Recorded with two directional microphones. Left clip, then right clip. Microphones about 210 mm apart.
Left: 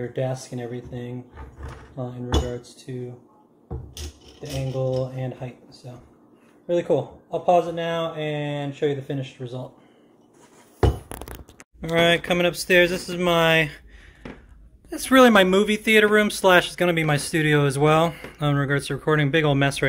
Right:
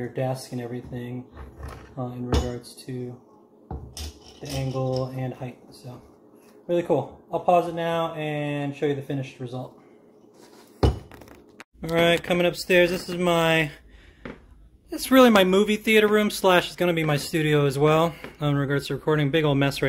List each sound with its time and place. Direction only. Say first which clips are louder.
0.0 s speech: left 1 dB; 5° left (ahead or behind)
4.7 s speech: left 3 dB; 10° right (ahead or behind)
6.7 s speech: left 1 dB; centre (ahead or behind)
11.8 s speech: left 2 dB; 5° right (ahead or behind)
14.9 s speech: left 2 dB; centre (ahead or behind)